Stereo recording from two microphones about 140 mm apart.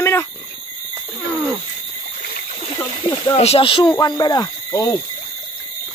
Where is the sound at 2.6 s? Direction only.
35° left (ahead or behind).